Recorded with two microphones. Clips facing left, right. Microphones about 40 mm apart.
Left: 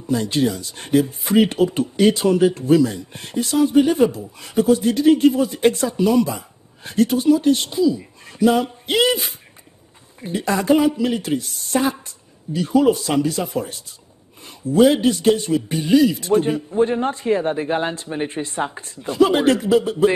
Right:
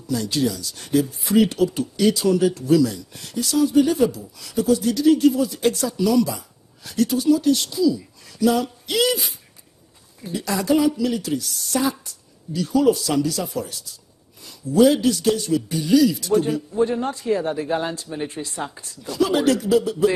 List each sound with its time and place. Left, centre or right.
0.0 s speech: left